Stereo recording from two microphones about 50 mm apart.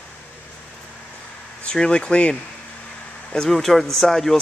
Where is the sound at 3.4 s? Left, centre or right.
Centre.